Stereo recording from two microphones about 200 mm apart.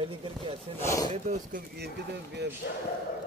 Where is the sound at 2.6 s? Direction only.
55° left (ahead or behind).